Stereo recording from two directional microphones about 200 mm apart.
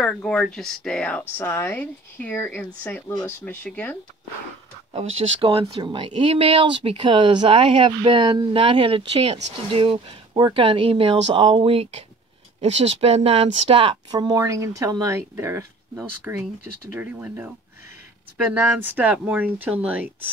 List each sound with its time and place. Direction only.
0.0 s speech: 5° left (ahead or behind)
5.4 s speech: 25° right (ahead or behind); by 17.5 s 10° right (ahead or behind)
18.5 s speech: 10° right (ahead or behind)